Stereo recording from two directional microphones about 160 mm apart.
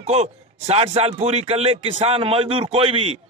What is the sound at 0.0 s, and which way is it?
A man's voice, 40° right (ahead or behind).